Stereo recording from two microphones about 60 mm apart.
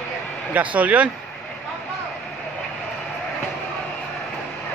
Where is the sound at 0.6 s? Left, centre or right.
Right.